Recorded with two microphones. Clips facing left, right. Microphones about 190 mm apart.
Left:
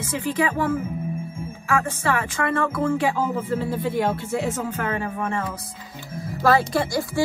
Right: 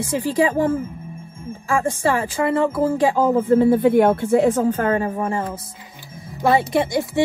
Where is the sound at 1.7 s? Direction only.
30° right (ahead or behind).